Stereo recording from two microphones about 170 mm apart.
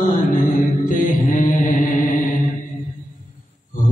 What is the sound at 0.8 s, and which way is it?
Mantra, 50° left (ahead or behind).